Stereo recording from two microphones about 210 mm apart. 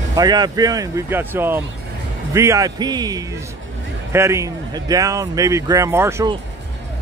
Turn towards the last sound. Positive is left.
turn(degrees=-10)  # may be behind; listen again after turning